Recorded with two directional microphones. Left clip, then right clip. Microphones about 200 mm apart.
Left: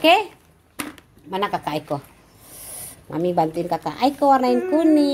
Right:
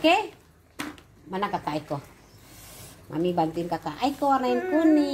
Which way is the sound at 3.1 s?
50° left (ahead or behind).